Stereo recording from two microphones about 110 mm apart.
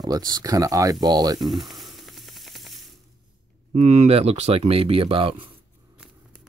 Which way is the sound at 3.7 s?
90° right.